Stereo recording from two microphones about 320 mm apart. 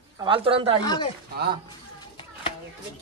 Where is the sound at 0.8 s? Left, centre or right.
Centre.